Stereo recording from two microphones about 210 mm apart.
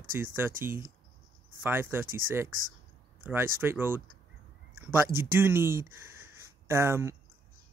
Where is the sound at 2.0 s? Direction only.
40° right (ahead or behind).